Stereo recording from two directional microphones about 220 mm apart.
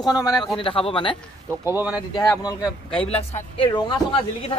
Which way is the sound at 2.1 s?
15° left (ahead or behind).